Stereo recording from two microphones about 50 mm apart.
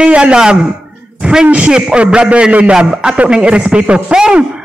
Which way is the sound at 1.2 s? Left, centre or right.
Centre.